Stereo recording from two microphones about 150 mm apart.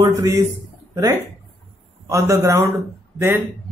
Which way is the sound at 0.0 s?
25° right (ahead or behind).